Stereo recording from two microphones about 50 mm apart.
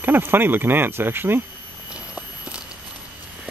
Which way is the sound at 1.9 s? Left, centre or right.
Right.